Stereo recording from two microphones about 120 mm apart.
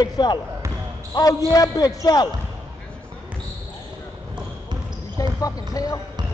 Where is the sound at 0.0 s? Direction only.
35° left (ahead or behind).